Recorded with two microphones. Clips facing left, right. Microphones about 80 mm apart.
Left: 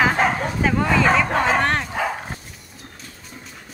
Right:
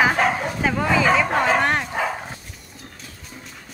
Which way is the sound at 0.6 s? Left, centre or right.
Centre.